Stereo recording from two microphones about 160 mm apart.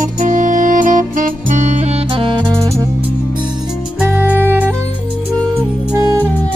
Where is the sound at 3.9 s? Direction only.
10° right (ahead or behind).